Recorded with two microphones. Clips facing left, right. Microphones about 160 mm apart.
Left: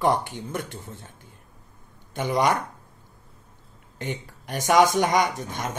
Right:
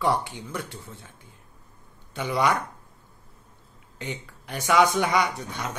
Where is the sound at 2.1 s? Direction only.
45° left (ahead or behind).